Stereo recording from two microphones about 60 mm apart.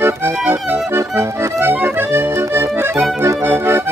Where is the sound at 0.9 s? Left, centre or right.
Right.